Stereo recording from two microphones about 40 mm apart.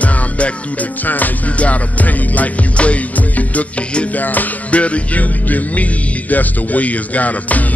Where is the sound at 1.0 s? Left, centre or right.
Left.